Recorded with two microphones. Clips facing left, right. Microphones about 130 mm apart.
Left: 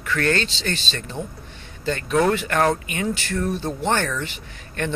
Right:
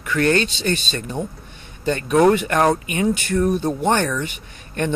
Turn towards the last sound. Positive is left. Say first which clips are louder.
# right 3 dB
turn(degrees=-20)  # may be behind; listen again after turning